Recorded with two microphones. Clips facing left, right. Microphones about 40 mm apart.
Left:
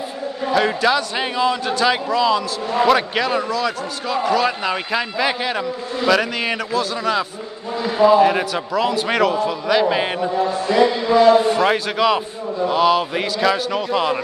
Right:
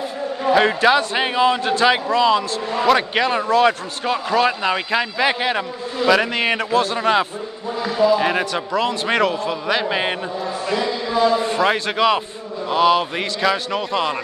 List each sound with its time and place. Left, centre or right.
0.5 s a man's voice: right
2.7 s a man's voice: centre
3.2 s a man's voice: centre
3.4 s a man's voice: right
4.1 s a man's voice: right
6.3 s a man's voice: centre
8.3 s a man's voice: centre
10.7 s music: left
11.4 s a man's voice: centre